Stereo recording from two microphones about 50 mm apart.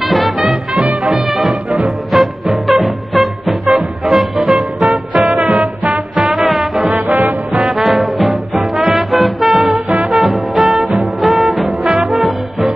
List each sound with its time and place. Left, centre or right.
0.1 s music: centre
6.3 s music: centre
6.9 s music: right
7.6 s music: centre